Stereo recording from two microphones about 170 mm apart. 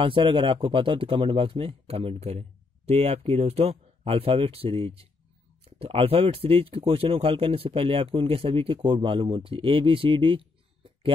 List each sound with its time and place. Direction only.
0.0 s speech: 30° right (ahead or behind)